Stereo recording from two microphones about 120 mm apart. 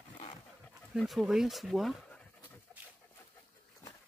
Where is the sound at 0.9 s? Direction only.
Centre (ahead or behind).